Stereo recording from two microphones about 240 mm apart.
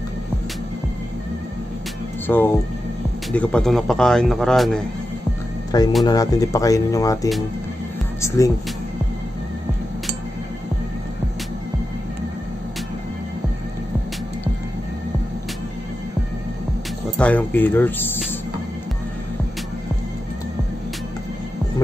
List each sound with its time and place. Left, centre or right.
2.2 s speech: centre
5.7 s speech: centre
17.2 s speech: centre